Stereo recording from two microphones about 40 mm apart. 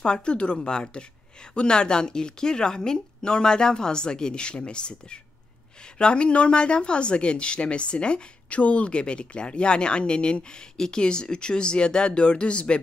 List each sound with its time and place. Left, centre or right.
0.0 s speech: left